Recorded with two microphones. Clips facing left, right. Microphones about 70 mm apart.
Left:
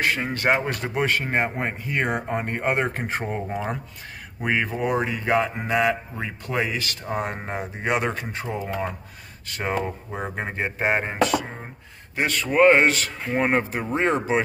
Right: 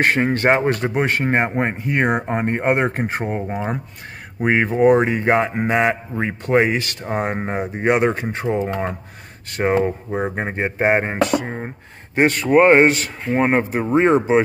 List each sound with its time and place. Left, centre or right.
0.0 s speech: right
10.1 s speech: right